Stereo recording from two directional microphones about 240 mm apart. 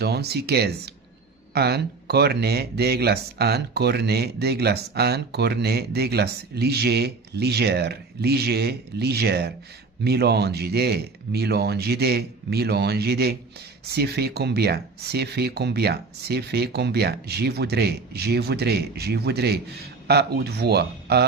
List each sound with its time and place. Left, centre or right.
0.0 s speech: right